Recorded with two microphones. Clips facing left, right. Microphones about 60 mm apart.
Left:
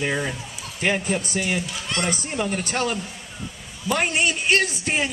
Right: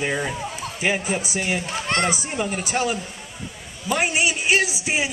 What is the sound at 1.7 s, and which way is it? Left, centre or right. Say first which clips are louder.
Speech: right 5 dB; right.